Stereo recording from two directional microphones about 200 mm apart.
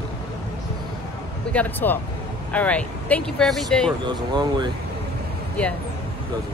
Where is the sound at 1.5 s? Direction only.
10° left (ahead or behind).